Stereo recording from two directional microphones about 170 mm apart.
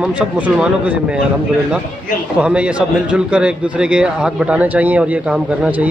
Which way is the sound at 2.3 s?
5° right (ahead or behind).